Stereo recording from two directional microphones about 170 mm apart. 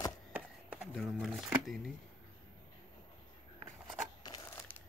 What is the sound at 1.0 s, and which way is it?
Speech, centre (ahead or behind).